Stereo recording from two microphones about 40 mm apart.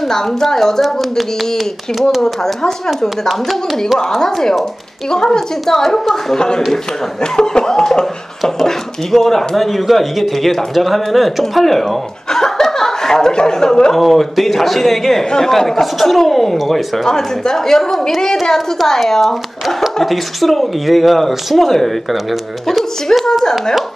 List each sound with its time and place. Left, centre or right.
0.0 s speech: centre
5.1 s speech: centre
6.3 s speech: centre
13.9 s speech: centre